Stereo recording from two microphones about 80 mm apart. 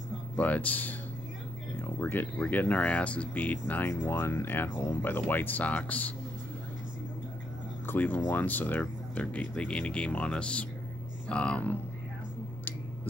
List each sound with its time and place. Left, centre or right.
0.4 s speech: centre
7.8 s speech: left